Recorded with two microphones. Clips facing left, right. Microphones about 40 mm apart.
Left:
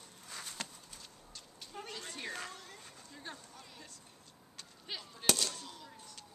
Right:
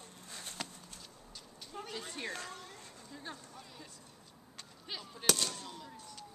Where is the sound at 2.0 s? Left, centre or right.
Centre.